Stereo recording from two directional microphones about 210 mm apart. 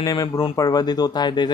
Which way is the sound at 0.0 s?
15° left (ahead or behind).